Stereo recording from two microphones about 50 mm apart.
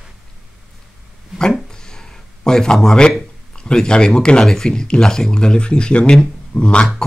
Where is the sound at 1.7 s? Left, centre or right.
Centre.